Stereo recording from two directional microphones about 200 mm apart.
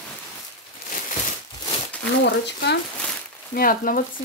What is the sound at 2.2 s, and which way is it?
Speech, 55° left (ahead or behind).